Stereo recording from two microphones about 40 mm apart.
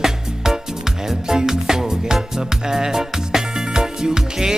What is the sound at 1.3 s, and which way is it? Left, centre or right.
Music, centre.